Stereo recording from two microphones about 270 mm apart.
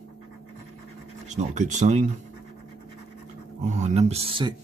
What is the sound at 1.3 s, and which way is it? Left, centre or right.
Speech, right.